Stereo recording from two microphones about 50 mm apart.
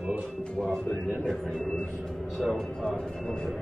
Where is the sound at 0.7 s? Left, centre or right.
Centre.